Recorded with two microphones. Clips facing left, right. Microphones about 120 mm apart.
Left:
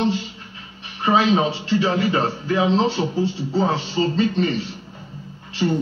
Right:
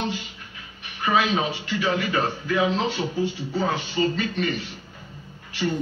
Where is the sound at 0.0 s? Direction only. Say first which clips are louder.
Left 7 dB; 30° left (ahead or behind).